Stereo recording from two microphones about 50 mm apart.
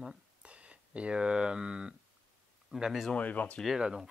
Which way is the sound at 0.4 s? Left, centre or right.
Right.